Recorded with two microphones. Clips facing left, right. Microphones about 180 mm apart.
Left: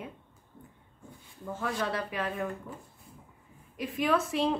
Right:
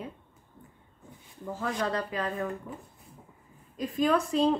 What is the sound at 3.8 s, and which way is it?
Speech, centre (ahead or behind).